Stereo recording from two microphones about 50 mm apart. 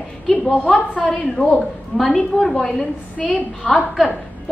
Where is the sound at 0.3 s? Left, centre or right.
Left.